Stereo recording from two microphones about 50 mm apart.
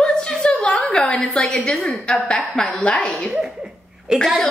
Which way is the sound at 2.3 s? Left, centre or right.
Left.